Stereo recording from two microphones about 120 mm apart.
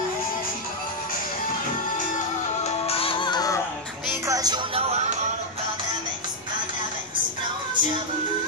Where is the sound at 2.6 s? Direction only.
55° left (ahead or behind); by 3.5 s 35° left (ahead or behind).